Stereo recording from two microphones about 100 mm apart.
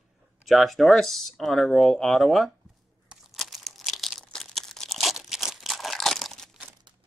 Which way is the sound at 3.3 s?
Centre (ahead or behind).